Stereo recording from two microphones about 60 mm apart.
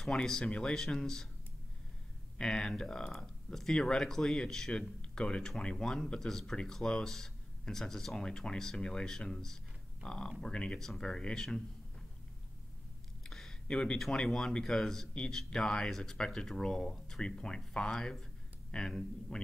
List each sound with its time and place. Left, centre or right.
0.0 s speech: centre
2.3 s speech: centre
13.2 s a sound: centre
14.0 s speech: centre